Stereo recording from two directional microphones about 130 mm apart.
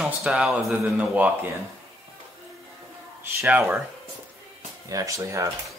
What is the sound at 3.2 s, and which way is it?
Speech, 15° right (ahead or behind).